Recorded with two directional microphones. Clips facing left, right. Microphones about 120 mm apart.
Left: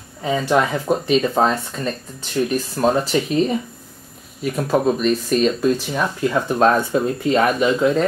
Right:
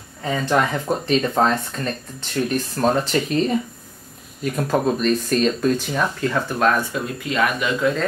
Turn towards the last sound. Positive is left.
turn(degrees=30)  # may be behind; listen again after turning